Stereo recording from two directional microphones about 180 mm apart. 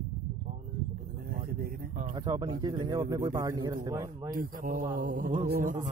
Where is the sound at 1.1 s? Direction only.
55° right (ahead or behind).